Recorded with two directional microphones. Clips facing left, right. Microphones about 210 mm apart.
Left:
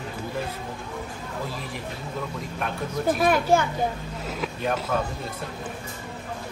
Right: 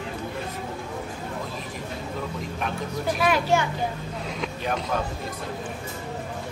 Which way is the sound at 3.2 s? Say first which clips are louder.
Left 1 dB; 50° left (ahead or behind).